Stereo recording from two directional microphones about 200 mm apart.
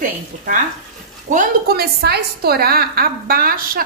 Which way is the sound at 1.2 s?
45° right (ahead or behind).